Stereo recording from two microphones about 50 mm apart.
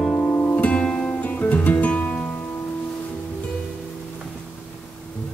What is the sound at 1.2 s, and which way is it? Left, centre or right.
Music, left.